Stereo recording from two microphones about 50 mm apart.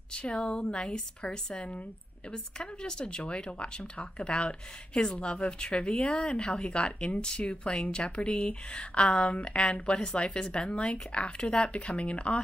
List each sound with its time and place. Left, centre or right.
0.1 s speech: centre